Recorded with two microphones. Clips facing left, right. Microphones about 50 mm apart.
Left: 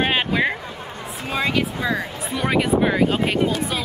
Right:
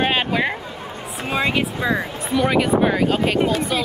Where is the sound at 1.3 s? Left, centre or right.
Right.